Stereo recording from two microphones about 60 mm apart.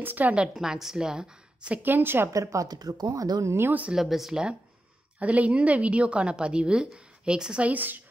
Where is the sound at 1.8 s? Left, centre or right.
Right.